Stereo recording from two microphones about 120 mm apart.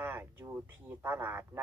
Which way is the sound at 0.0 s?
20° right (ahead or behind).